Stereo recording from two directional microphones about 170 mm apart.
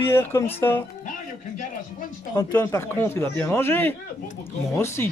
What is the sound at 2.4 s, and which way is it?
Speech, 15° left (ahead or behind).